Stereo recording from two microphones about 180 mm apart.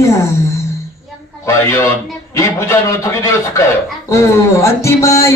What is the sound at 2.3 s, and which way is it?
Speech, 15° left (ahead or behind).